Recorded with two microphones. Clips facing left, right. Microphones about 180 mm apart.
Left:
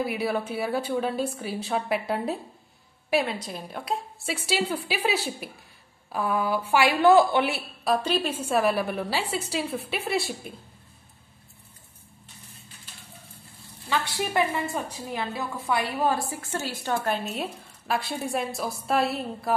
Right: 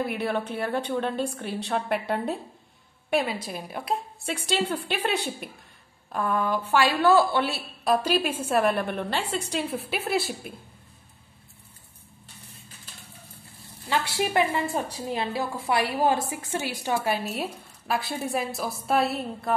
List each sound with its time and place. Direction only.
0.0 s a woman's voice: 5° left (ahead or behind)
7.8 s speech: 5° right (ahead or behind)
13.8 s a woman's voice: 20° right (ahead or behind)
14.7 s a woman's voice: 30° right (ahead or behind); by 19.5 s centre (ahead or behind)